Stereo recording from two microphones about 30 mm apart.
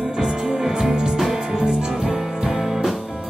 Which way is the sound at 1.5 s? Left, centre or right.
Right.